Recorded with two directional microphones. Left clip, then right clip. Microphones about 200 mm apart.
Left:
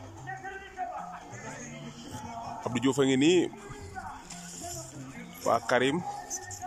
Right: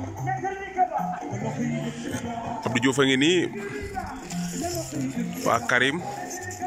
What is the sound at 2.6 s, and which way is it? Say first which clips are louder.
Speech: right 5 dB; 10° left (ahead or behind).